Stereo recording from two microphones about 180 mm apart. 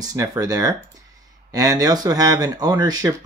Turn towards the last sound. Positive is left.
turn(degrees=-20)  # may be behind; listen again after turning